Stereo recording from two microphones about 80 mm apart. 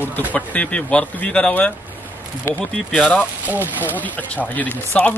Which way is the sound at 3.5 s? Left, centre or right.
Right.